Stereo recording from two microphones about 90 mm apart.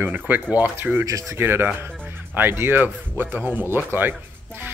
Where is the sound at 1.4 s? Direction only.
25° right (ahead or behind).